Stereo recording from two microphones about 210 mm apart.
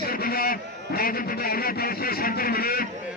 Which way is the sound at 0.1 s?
45° left (ahead or behind).